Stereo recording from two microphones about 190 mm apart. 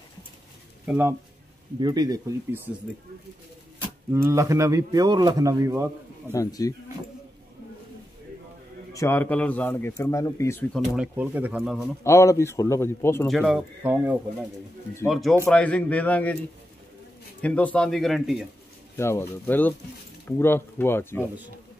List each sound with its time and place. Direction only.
0.8 s a man's voice: 10° right (ahead or behind)
1.8 s speech: 20° right (ahead or behind)
4.1 s a man's voice: 15° right (ahead or behind)
6.3 s speech: 15° left (ahead or behind)
8.9 s speech: 15° left (ahead or behind)
11.0 s speech: 10° right (ahead or behind)
12.0 s speech: 15° left (ahead or behind)
13.3 s speech: centre (ahead or behind)
17.4 s speech: 5° left (ahead or behind)
18.9 s speech: 15° left (ahead or behind)